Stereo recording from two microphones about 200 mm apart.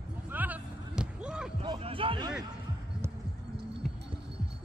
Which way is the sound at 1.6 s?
30° right (ahead or behind).